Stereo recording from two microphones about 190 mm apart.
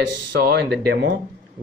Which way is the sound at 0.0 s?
65° right (ahead or behind).